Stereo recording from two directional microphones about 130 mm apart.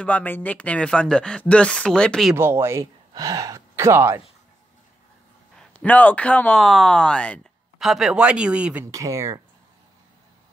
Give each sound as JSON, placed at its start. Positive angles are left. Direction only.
{"t": 0.0, "sound": "speech", "side_deg": 10}
{"t": 2.3, "sound": "speech", "side_deg": -20}
{"t": 5.6, "sound": "speech", "side_deg": 10}
{"t": 7.8, "sound": "speech", "side_deg": -5}
{"t": 8.9, "sound": "speech", "side_deg": -25}